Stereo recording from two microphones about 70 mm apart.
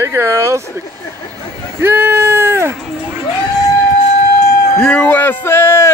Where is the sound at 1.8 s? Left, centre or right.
Right.